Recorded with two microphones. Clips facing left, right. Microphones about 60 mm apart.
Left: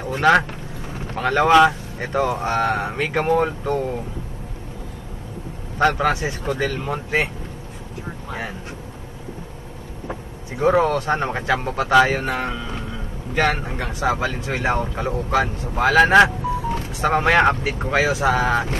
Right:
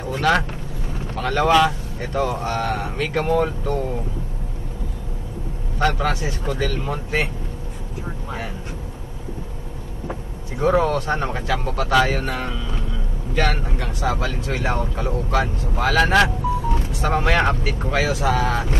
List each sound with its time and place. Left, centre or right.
0.2 s speech: left
5.8 s speech: centre
10.5 s speech: centre